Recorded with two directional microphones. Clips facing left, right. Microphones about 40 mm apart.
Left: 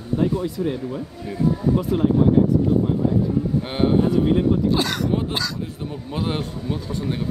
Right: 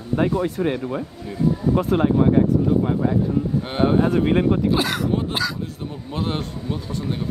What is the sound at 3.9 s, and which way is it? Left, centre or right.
Speech, right.